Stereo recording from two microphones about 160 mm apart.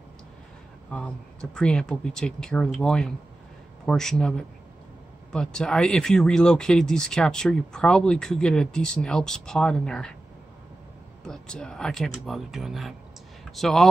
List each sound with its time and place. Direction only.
0.8 s speech: 5° left (ahead or behind)
11.2 s speech: 5° left (ahead or behind)